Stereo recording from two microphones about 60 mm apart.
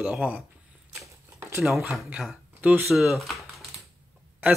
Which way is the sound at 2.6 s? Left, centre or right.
Right.